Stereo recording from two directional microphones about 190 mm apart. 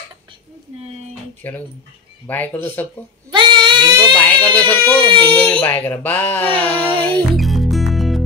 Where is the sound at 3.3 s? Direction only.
25° right (ahead or behind).